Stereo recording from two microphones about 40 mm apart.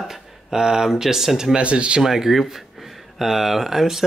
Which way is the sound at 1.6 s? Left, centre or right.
Right.